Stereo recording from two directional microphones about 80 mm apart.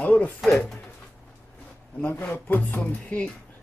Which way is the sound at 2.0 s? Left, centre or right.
Left.